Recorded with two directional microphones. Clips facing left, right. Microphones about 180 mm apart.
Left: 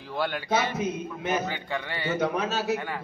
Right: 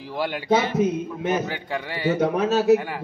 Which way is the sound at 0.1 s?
15° right (ahead or behind).